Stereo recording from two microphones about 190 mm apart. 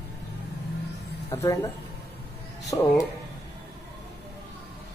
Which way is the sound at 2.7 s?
20° left (ahead or behind).